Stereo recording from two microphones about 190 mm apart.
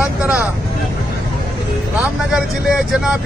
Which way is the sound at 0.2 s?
5° right (ahead or behind).